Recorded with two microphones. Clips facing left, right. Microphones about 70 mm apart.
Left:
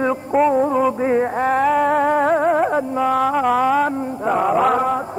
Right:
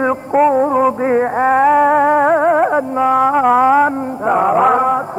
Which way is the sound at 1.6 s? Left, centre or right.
Centre.